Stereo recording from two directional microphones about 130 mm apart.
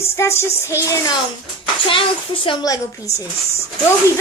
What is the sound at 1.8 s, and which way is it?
Speech, 40° left (ahead or behind).